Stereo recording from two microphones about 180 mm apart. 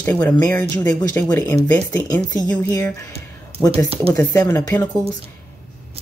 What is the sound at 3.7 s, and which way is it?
Speech, 30° right (ahead or behind).